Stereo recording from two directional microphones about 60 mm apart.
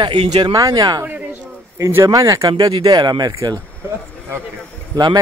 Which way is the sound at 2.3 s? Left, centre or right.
Right.